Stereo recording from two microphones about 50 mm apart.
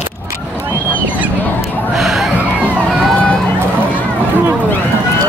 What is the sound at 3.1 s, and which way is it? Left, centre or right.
Vehicle, left.